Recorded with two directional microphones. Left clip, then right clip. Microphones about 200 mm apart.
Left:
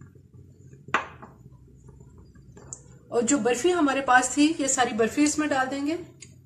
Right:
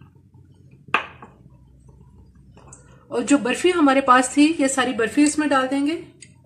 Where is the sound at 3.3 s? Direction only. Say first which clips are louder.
Right 6 dB; 40° right (ahead or behind).